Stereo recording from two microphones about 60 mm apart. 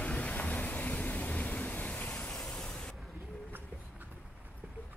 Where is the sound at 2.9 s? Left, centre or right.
Centre.